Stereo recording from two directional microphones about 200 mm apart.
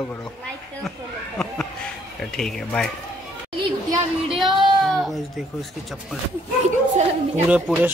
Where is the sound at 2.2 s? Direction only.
Centre (ahead or behind).